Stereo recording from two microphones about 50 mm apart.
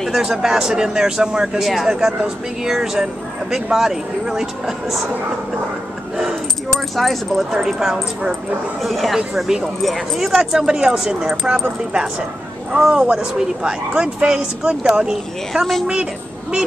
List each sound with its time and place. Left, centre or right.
0.1 s speech: centre
7.0 s speech: centre
8.8 s speech: centre